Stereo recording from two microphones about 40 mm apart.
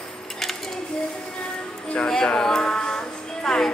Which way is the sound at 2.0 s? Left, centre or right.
Centre.